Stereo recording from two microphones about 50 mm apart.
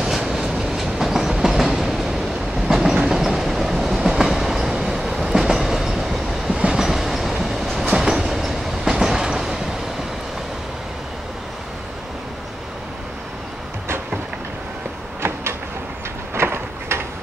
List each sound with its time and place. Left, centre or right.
0.0 s train: centre
6.5 s train: centre
6.8 s train: centre
16.3 s a sound: right